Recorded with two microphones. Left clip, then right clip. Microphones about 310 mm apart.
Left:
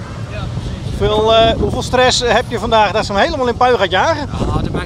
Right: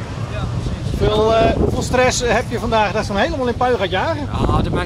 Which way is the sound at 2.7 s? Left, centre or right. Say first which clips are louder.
Left 5 dB; centre.